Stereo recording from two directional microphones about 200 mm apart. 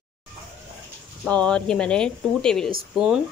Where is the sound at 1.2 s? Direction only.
5° left (ahead or behind).